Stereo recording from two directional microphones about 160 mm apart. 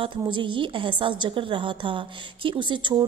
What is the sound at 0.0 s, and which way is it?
A woman's voice, 30° right (ahead or behind).